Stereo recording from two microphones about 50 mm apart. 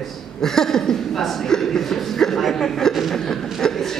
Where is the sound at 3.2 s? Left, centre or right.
Centre.